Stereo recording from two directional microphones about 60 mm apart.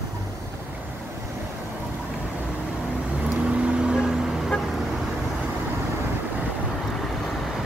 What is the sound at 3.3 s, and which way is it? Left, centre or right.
Vehicle, centre.